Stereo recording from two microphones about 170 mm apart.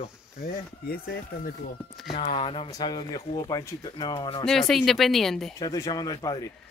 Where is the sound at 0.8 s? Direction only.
60° left (ahead or behind).